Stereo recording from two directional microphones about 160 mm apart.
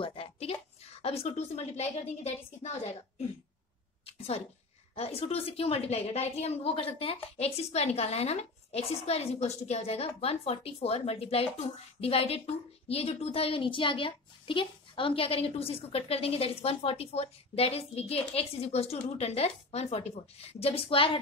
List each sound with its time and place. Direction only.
0.0 s a sound: 35° left (ahead or behind)
1.0 s a woman's voice: 40° left (ahead or behind)
4.9 s a woman's voice: 40° left (ahead or behind)